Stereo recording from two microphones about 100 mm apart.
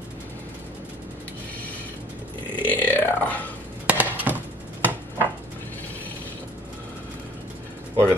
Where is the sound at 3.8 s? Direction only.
15° right (ahead or behind).